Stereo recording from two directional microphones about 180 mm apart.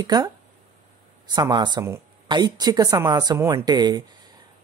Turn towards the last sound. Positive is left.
turn(degrees=-20)  # may be behind; listen again after turning